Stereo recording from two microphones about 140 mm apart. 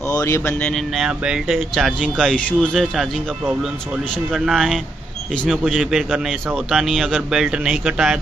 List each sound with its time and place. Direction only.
0.1 s speech: 20° left (ahead or behind)
0.6 s a man's voice: 5° left (ahead or behind)
1.0 s a man's voice: 5° right (ahead or behind)
4.3 s a man's voice: centre (ahead or behind)